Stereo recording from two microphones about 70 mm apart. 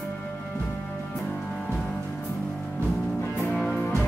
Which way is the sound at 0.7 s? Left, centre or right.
Left.